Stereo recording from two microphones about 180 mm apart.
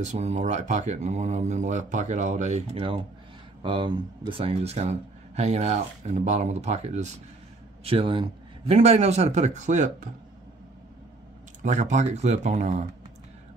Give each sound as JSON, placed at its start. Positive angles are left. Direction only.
{"t": 0.0, "sound": "speech", "side_deg": -40}
{"t": 11.6, "sound": "speech", "side_deg": -40}